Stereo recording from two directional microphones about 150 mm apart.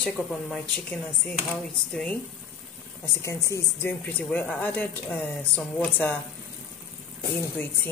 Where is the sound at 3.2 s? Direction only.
20° left (ahead or behind).